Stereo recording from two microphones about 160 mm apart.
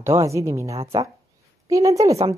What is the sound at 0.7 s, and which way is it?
Speech, 35° right (ahead or behind).